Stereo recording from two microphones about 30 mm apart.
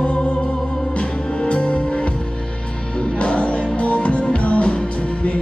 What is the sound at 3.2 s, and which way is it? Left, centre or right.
Music, left.